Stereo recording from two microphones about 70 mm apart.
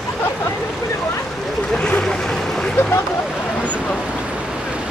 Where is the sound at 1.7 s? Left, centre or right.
Centre.